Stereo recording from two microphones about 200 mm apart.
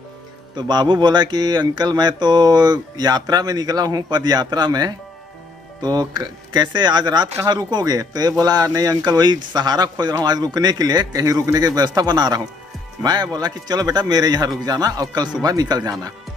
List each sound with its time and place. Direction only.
0.6 s speech: 20° right (ahead or behind)